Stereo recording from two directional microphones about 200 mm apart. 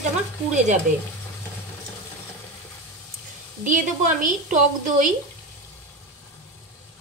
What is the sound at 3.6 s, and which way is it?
Speech, 40° right (ahead or behind).